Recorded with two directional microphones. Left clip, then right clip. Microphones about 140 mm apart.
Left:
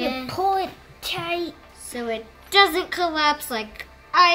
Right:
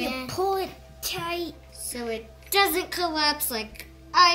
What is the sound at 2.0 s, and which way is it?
A woman's voice, 20° right (ahead or behind).